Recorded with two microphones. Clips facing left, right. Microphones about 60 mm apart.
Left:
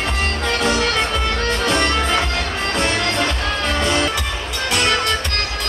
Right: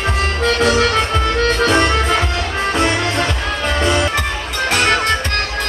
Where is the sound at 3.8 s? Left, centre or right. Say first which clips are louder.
Right 3 dB; centre.